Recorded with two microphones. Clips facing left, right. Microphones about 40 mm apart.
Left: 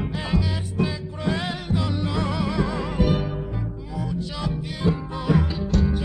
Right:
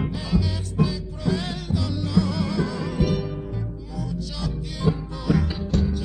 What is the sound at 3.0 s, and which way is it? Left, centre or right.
Music, centre.